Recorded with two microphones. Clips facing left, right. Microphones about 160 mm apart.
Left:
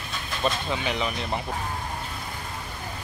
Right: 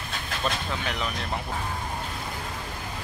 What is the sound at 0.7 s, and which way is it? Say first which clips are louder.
Speech: left 3 dB; 5° left (ahead or behind).